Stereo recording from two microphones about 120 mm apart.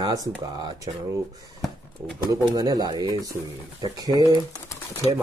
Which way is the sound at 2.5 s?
30° right (ahead or behind).